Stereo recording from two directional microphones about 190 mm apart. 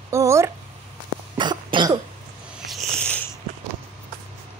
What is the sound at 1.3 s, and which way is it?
Cough, 25° right (ahead or behind).